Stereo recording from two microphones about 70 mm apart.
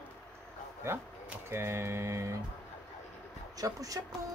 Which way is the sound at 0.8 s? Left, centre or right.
Right.